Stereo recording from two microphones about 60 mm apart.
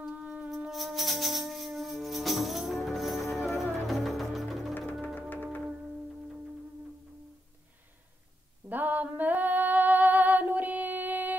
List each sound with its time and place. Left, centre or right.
0.2 s wind instrument: right
0.7 s music: centre
5.3 s music: left
8.6 s female singing: right